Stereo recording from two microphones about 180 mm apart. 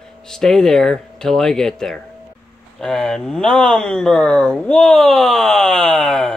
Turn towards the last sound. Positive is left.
turn(degrees=0)  # may be behind; listen again after turning